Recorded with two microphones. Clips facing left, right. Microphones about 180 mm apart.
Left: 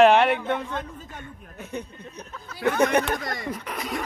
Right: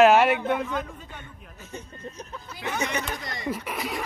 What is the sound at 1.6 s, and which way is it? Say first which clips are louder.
Speech: left 4 dB; 60° left (ahead or behind).